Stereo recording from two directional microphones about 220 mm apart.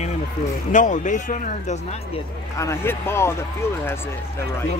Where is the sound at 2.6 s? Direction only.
10° left (ahead or behind).